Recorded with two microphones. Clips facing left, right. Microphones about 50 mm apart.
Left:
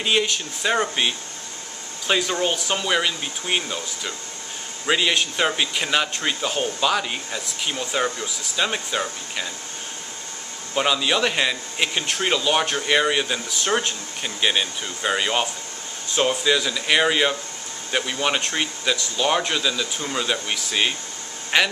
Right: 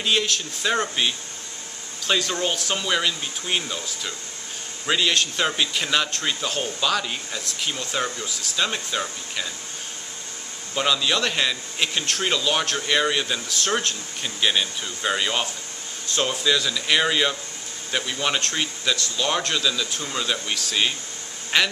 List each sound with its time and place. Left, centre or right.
0.0 s a man's voice: centre
2.0 s a man's voice: centre
4.8 s a man's voice: centre
10.7 s a man's voice: centre